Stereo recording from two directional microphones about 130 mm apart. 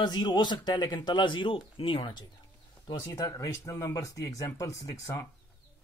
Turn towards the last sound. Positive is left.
turn(degrees=25)  # may be behind; listen again after turning